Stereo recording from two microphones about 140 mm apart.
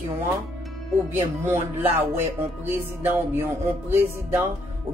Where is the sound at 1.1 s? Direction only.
15° right (ahead or behind).